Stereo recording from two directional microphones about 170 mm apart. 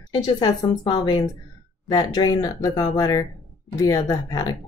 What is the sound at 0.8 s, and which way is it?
Speech, 25° left (ahead or behind).